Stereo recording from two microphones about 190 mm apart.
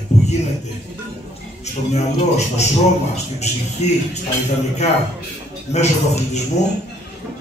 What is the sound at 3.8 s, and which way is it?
Music, 35° left (ahead or behind).